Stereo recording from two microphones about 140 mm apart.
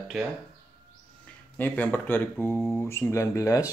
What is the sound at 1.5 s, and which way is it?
Speech, 10° left (ahead or behind).